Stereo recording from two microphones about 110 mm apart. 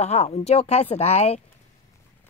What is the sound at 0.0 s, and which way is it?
A woman's voice, 75° left (ahead or behind).